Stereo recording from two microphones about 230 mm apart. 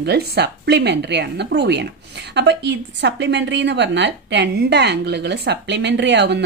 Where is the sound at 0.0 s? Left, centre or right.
Right.